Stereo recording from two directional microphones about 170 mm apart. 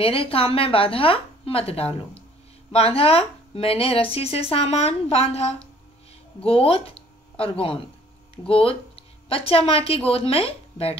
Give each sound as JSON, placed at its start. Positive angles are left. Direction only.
{"t": 0.0, "sound": "speech", "side_deg": 35}